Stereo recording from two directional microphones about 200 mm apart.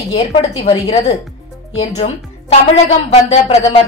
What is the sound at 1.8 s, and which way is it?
Speech, 35° left (ahead or behind).